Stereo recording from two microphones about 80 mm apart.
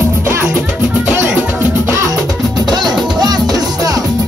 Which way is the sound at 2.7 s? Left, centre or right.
Right.